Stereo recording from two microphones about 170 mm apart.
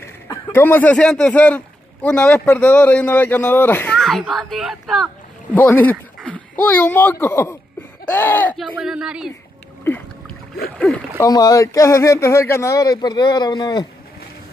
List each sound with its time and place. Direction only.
0.0 s a man's voice: 15° left (ahead or behind)
8.5 s speech: centre (ahead or behind)
11.1 s speech: 20° left (ahead or behind)